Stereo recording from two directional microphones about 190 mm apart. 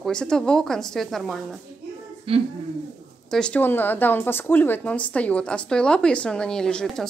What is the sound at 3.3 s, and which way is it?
Speech, 5° left (ahead or behind).